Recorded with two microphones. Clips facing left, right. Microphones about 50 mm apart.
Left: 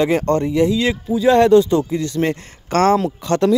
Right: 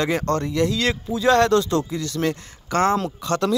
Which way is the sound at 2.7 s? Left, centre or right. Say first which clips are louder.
Left 5 dB; left.